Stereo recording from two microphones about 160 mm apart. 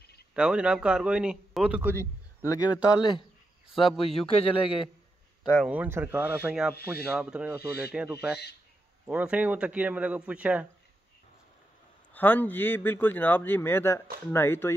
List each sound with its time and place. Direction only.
0.3 s speech: 5° right (ahead or behind)
2.5 s speech: 25° left (ahead or behind)
3.7 s speech: centre (ahead or behind)
5.7 s a man's voice: 10° right (ahead or behind)
12.1 s a man's voice: 10° left (ahead or behind)